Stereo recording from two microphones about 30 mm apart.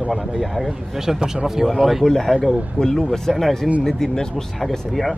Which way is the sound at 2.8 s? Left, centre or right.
Left.